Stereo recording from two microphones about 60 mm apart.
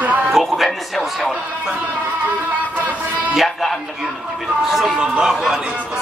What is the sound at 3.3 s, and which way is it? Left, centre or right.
Music, centre.